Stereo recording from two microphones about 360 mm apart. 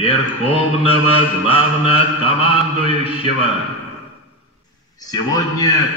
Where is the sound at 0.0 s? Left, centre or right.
Centre.